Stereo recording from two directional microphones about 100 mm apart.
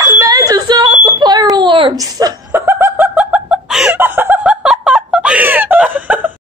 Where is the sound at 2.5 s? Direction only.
25° right (ahead or behind).